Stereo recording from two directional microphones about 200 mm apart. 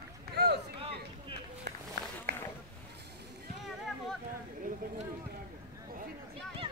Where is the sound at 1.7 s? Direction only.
55° right (ahead or behind).